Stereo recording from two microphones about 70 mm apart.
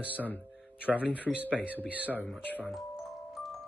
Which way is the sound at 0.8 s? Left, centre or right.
Right.